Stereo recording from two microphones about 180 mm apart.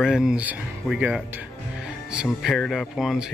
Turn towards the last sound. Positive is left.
turn(degrees=0)  # may be behind; listen again after turning